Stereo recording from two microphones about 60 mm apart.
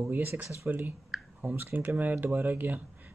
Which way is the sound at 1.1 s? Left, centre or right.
Centre.